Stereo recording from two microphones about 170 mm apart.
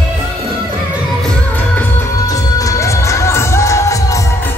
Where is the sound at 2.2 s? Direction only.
20° left (ahead or behind).